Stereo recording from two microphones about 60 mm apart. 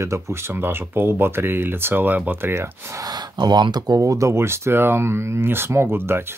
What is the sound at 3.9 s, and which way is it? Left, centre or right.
Speech, right.